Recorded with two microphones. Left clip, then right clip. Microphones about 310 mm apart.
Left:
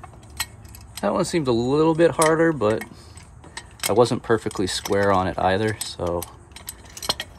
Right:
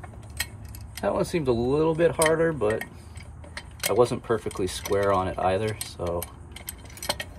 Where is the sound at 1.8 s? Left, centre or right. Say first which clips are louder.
Left 6 dB; left.